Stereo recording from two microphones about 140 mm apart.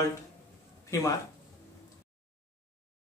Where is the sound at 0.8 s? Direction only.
25° left (ahead or behind).